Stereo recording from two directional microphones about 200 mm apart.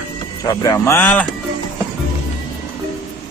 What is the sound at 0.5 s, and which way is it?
Speech, 15° left (ahead or behind).